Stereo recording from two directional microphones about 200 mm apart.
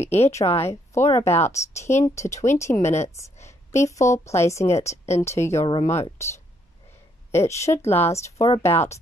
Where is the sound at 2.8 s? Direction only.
35° left (ahead or behind).